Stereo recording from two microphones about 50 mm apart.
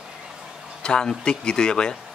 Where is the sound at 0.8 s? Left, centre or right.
Centre.